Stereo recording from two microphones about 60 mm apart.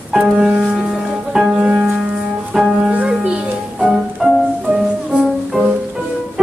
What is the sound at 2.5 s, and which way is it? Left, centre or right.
Music, centre.